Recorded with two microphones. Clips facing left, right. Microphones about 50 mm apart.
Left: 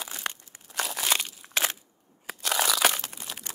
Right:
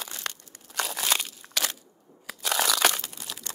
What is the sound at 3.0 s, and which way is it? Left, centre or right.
Crumpling, left.